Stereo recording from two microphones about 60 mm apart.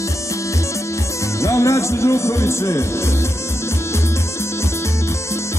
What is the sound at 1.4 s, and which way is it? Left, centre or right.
Music, left.